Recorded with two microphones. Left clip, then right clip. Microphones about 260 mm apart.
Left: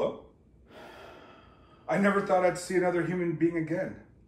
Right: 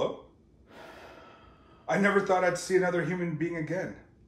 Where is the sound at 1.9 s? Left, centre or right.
Right.